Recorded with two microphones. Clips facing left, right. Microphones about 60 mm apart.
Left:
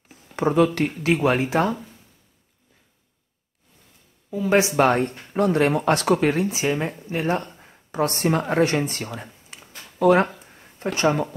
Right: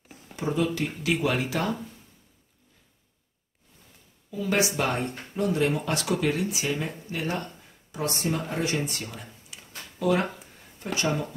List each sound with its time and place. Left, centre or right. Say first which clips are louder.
0.4 s speech: left 8 dB; left
1.1 s speech: left 7 dB; left
4.3 s speech: left 6 dB; left
4.7 s speech: left 9 dB; left
5.3 s speech: left 6 dB; left
7.9 s speech: left 7 dB; left